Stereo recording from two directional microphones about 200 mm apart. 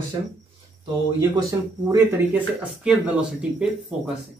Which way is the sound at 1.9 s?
5° right (ahead or behind).